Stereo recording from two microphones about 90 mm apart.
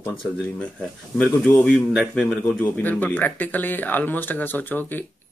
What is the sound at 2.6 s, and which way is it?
Speech, 20° left (ahead or behind).